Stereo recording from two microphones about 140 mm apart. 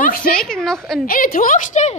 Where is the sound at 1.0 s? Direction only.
85° left; by 1.9 s 60° left (ahead or behind).